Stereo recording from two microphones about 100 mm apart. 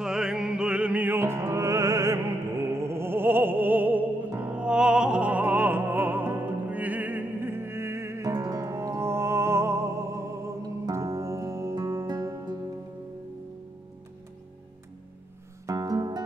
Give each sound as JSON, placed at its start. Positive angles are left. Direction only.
{"t": 0.0, "sound": "music", "side_deg": -5}
{"t": 15.6, "sound": "music", "side_deg": -35}